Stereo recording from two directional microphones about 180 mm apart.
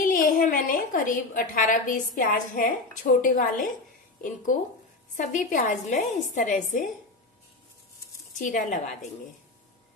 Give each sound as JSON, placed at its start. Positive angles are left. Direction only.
{"t": 0.0, "sound": "a woman's voice", "side_deg": 50}
{"t": 5.1, "sound": "a woman's voice", "side_deg": 45}
{"t": 8.3, "sound": "a woman's voice", "side_deg": 45}